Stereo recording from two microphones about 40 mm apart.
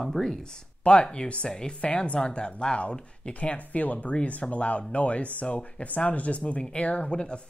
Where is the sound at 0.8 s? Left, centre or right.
Left.